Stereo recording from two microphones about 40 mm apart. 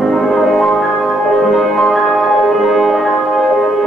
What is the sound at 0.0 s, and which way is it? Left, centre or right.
Music, centre.